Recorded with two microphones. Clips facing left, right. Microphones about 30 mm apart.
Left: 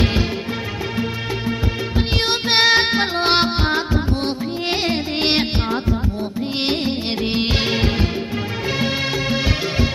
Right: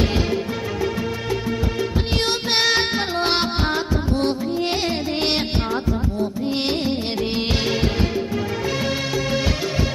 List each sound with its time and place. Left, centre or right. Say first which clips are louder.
2.2 s music: left 5 dB; left
8.8 s music: left 2 dB; left